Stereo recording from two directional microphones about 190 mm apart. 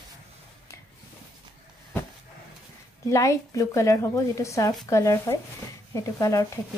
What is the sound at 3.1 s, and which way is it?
Speech, 15° left (ahead or behind).